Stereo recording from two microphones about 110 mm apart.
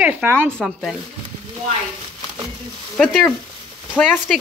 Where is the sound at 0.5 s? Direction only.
5° left (ahead or behind).